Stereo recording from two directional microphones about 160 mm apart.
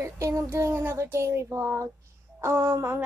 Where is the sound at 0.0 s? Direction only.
20° right (ahead or behind).